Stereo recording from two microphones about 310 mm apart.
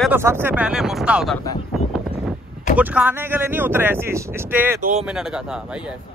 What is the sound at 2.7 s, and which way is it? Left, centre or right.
Speech, centre.